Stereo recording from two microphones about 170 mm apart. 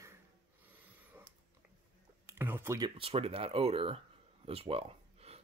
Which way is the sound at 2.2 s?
15° right (ahead or behind).